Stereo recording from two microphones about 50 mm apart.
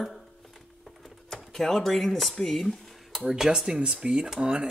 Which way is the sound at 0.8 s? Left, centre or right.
Centre.